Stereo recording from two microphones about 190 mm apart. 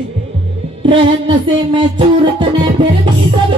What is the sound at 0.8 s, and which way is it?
Music, 25° right (ahead or behind).